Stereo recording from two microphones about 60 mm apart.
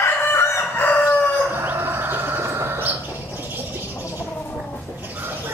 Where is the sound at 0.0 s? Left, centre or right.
Left.